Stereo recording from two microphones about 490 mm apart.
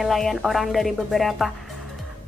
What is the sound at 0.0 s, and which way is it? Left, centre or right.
A woman's voice, centre.